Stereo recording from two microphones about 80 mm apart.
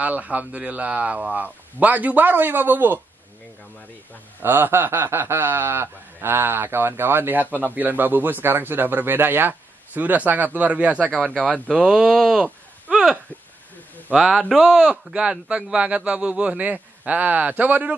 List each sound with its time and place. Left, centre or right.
0.0 s a man's voice: centre
4.4 s a man's voice: right; by 12.0 s centre
12.0 s speech: centre
14.2 s speech: centre
14.5 s a man's voice: centre